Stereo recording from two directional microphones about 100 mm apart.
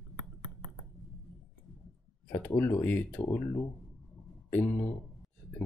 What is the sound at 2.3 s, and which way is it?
Speech, 20° left (ahead or behind).